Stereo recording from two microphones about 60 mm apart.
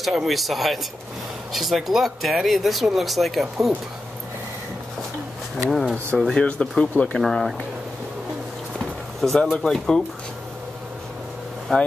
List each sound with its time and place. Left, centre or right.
0.1 s speech: centre
5.7 s speech: centre
6.1 s speech: centre
7.2 s speech: centre
8.7 s a sound: centre
9.4 s speech: centre
11.7 s speech: centre